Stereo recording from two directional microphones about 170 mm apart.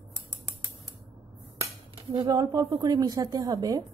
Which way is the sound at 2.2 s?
20° right (ahead or behind).